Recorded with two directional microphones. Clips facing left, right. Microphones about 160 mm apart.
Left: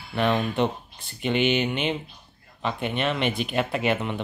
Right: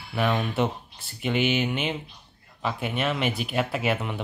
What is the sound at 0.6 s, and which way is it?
Speech, 5° right (ahead or behind).